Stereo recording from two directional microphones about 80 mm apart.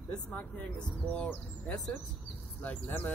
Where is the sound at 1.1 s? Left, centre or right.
Centre.